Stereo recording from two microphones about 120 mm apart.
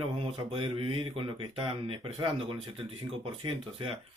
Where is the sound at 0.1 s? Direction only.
45° right (ahead or behind).